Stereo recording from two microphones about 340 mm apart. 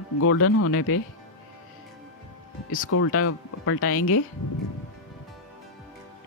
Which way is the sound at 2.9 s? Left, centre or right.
Left.